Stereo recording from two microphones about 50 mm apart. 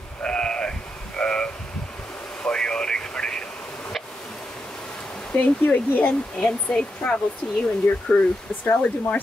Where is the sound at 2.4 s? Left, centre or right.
Centre.